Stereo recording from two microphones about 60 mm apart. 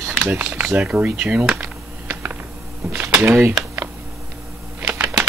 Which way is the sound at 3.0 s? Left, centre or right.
Right.